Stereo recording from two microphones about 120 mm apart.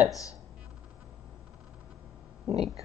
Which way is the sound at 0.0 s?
30° left (ahead or behind).